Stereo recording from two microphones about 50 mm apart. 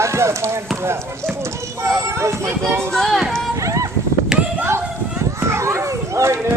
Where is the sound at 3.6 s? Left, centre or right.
Right.